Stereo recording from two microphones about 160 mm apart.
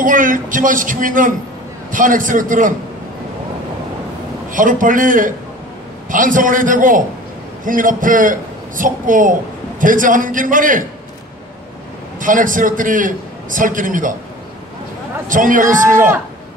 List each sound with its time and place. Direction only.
0.0 s a man's voice: 55° right (ahead or behind)
4.5 s a man's voice: 55° right (ahead or behind)
12.2 s a man's voice: 55° right (ahead or behind)
15.2 s a man's voice: 55° right (ahead or behind)